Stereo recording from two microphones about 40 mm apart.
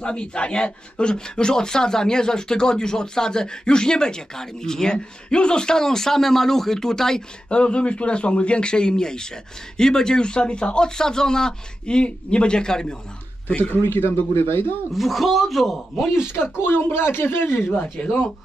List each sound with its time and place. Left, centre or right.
0.0 s speech: left
7.4 s speech: left
13.7 s speech: left
15.0 s a man's voice: centre
16.5 s speech: left
17.7 s speech: left